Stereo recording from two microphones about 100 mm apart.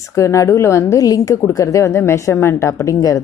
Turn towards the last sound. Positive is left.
turn(degrees=35)  # may be behind; listen again after turning